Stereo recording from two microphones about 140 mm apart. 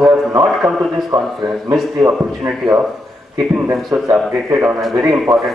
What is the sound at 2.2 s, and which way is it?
A man's voice, centre (ahead or behind).